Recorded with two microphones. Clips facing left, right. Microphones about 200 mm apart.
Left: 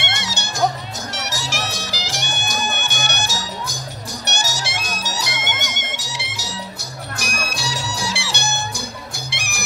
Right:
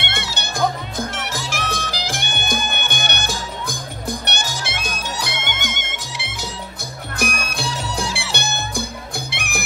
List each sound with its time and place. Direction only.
0.0 s music: 55° right (ahead or behind)